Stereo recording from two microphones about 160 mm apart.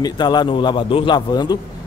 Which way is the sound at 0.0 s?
25° left (ahead or behind).